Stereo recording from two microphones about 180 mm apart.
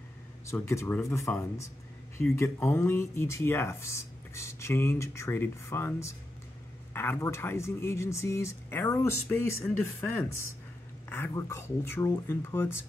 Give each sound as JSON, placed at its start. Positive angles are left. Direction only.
{"t": 0.5, "sound": "speech", "side_deg": 15}